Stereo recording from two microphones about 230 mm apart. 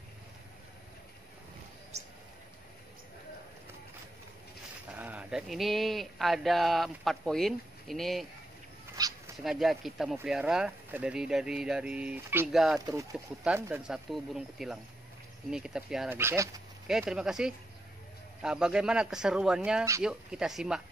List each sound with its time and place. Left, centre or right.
4.9 s speech: centre
9.0 s dog: centre
9.4 s speech: centre
12.8 s speech: centre